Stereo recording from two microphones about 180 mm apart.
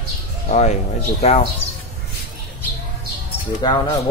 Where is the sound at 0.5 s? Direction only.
40° left (ahead or behind).